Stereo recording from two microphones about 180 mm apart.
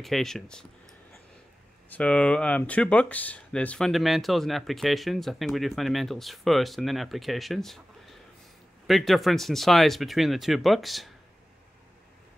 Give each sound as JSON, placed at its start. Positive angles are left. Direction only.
{"t": 0.0, "sound": "speech", "side_deg": 0}
{"t": 1.9, "sound": "speech", "side_deg": 5}